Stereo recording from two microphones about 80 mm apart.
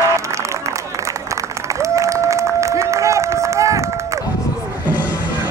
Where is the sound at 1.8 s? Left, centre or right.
Right.